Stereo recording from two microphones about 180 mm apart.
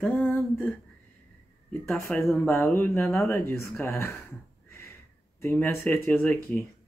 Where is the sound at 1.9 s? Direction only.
15° left (ahead or behind).